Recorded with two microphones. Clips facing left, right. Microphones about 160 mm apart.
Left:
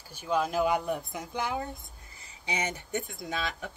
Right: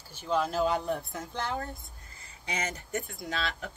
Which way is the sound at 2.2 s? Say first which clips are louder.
Left 2 dB; 25° left (ahead or behind).